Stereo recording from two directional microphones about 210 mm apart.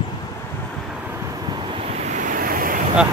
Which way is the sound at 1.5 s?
25° right (ahead or behind).